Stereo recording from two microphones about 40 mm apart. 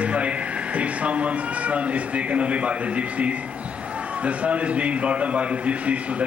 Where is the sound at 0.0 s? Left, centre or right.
Right.